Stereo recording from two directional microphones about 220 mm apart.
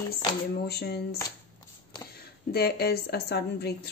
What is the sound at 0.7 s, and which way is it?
Speech, 45° left (ahead or behind).